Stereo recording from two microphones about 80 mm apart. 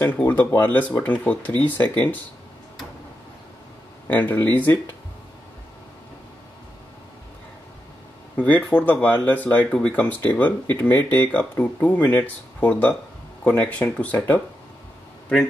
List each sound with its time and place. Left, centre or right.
0.0 s speech: left
4.1 s speech: left
8.4 s speech: centre